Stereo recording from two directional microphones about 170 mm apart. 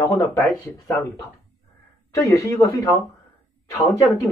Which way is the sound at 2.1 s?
20° left (ahead or behind).